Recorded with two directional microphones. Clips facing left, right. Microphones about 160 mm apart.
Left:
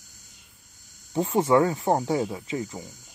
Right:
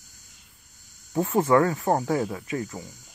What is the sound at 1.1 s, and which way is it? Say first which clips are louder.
Speech: even; 25° left (ahead or behind).